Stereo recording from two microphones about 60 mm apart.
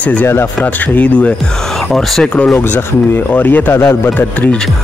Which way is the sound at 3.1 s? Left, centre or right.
Left.